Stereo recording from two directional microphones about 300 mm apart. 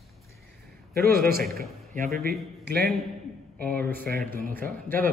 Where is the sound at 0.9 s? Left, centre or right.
Right.